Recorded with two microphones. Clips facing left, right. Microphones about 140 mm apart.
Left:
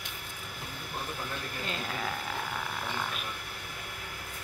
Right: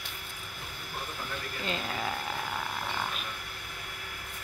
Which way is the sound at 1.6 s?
Centre (ahead or behind).